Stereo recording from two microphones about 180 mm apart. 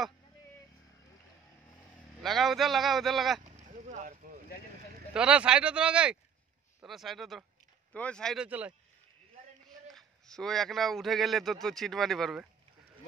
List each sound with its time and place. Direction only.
2.2 s a man's voice: centre (ahead or behind)
3.7 s a sound: 45° right (ahead or behind)
5.1 s a man's voice: 5° right (ahead or behind)
8.5 s speech: 10° right (ahead or behind)
9.8 s a man's voice: centre (ahead or behind)